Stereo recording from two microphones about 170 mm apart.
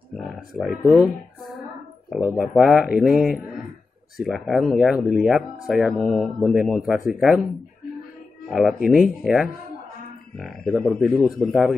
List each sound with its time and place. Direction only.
0.1 s speech: centre (ahead or behind)
2.0 s speech: 5° right (ahead or behind)
8.5 s speech: centre (ahead or behind)